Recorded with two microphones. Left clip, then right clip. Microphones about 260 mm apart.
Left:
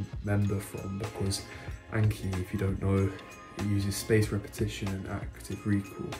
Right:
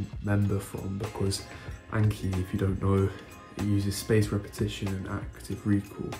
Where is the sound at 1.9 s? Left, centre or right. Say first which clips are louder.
Right 2 dB; centre.